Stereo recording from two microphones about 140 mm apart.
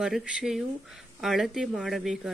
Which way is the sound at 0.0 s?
5° right (ahead or behind).